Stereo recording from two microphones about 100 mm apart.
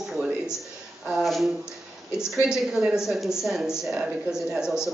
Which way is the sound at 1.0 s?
Centre (ahead or behind).